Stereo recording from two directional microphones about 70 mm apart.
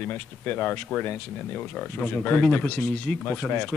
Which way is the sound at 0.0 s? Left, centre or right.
Left.